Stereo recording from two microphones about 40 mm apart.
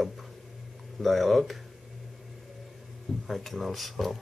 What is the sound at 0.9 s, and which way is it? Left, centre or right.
Speech, centre.